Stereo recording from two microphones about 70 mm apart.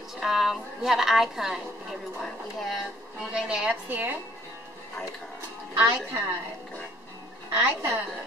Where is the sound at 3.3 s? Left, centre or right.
Centre.